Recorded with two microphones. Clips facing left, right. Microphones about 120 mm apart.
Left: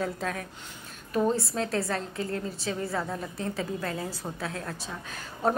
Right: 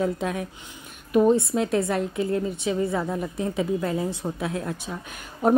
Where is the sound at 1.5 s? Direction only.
20° right (ahead or behind).